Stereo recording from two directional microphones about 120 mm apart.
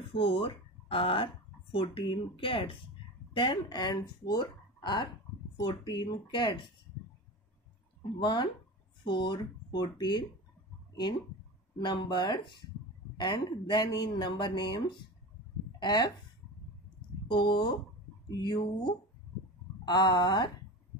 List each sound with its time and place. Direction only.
0.1 s speech: 50° left (ahead or behind)
8.2 s speech: 40° left (ahead or behind)
11.8 s speech: 40° left (ahead or behind)
17.3 s speech: 40° left (ahead or behind)